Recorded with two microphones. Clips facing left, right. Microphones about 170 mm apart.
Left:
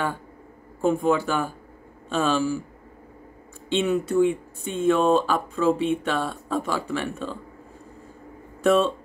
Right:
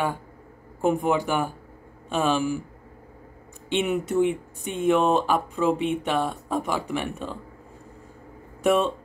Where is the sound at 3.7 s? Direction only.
15° right (ahead or behind).